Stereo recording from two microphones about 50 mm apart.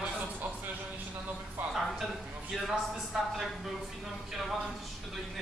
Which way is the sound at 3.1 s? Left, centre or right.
Centre.